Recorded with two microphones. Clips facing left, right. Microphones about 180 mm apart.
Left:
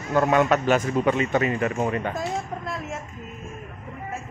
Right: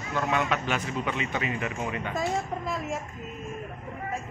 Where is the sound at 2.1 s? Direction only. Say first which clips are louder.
Even; centre (ahead or behind).